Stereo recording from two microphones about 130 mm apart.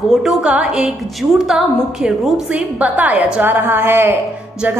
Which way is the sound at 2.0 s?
5° right (ahead or behind).